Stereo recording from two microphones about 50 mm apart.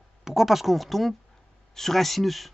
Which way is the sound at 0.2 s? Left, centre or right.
Centre.